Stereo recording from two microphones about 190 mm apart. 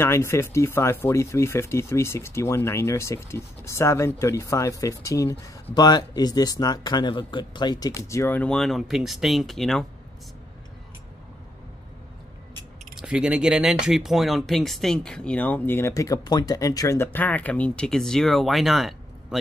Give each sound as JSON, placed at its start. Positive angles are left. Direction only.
{"t": 0.0, "sound": "speech", "side_deg": 15}
{"t": 12.9, "sound": "speech", "side_deg": -5}